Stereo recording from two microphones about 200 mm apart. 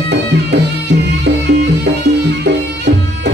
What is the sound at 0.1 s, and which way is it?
Music, 60° right (ahead or behind).